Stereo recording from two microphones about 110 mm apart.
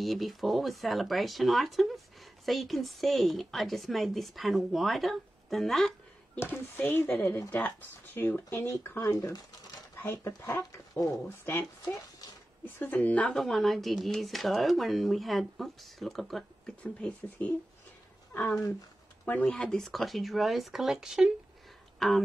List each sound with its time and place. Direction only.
0.0 s speech: centre (ahead or behind)
6.4 s speech: 20° left (ahead or behind)
8.5 s speech: 30° left (ahead or behind)
10.1 s speech: 20° left (ahead or behind)
11.8 s a sound: 35° left (ahead or behind)
12.6 s speech: 20° left (ahead or behind)
13.4 s speech: centre (ahead or behind)
16.8 s speech: 10° left (ahead or behind)
19.2 s speech: 10° left (ahead or behind); by 21.3 s 5° right (ahead or behind)
21.9 s a sound: centre (ahead or behind)